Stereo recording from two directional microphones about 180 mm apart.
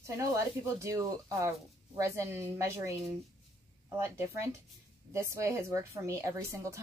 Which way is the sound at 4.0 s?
15° right (ahead or behind).